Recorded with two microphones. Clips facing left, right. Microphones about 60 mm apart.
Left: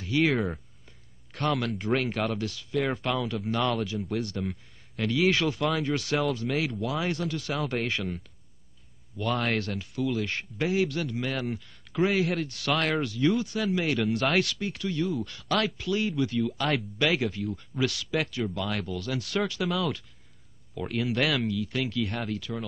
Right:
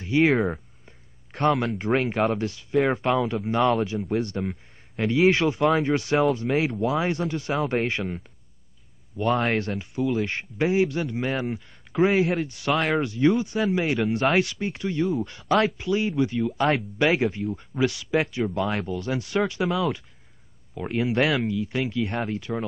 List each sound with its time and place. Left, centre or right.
0.0 s speech: right
12.7 s speech: centre
13.0 s speech: right